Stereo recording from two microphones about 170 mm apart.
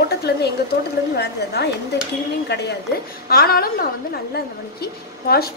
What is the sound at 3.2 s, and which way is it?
A woman's voice, 65° left (ahead or behind).